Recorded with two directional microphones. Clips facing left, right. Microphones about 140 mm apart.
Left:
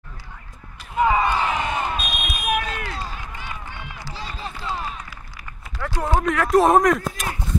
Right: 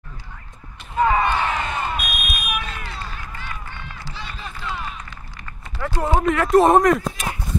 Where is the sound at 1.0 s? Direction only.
15° left (ahead or behind).